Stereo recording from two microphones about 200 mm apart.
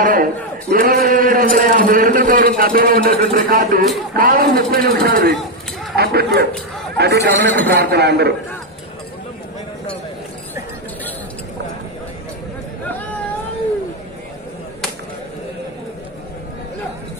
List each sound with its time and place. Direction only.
0.0 s a man's voice: 45° right (ahead or behind)